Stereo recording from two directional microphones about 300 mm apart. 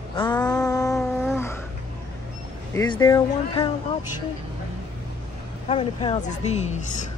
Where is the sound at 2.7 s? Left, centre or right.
Centre.